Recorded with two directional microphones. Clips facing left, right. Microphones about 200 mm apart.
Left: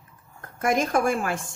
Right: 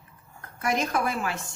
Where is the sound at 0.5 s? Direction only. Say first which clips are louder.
Left 4 dB; 50° left (ahead or behind).